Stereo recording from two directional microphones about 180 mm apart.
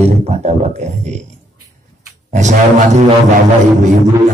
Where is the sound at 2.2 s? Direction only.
40° right (ahead or behind).